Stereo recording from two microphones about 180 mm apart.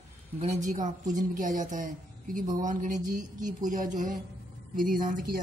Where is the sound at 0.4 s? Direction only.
40° right (ahead or behind).